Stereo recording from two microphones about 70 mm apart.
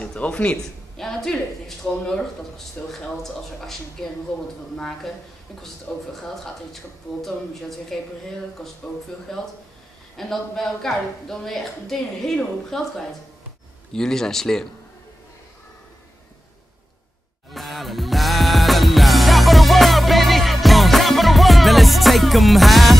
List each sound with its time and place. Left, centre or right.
0.0 s a woman's voice: centre
6.1 s a woman's voice: centre
17.5 s music: centre